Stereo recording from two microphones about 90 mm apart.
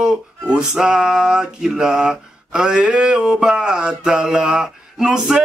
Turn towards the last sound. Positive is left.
turn(degrees=-5)  # may be behind; listen again after turning